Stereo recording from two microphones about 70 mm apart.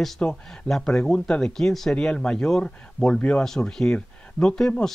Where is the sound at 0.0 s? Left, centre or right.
Centre.